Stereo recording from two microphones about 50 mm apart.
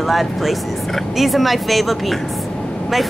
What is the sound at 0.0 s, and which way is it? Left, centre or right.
Speech, centre.